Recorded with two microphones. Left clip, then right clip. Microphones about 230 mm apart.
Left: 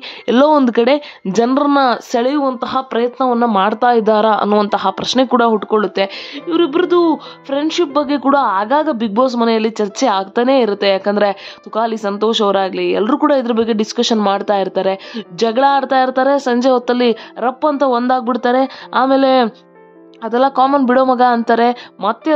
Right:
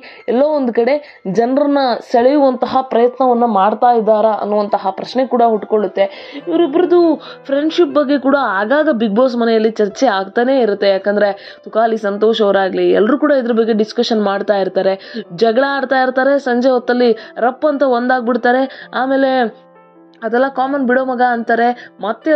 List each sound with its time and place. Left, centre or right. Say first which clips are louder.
0.7 s speech: left 1 dB; left; by 3.3 s centre
3.3 s a woman's voice: right 2 dB; centre